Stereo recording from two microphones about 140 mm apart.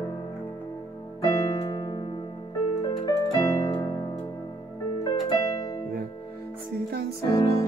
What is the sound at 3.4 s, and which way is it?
Keyboard, 25° left (ahead or behind).